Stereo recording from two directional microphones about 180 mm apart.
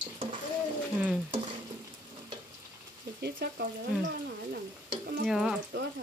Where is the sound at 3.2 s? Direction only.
60° right (ahead or behind).